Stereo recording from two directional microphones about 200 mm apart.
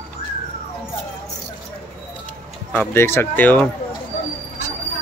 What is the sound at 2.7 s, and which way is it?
Speech, 10° left (ahead or behind).